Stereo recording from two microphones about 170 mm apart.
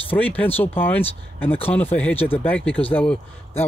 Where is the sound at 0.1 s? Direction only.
10° left (ahead or behind).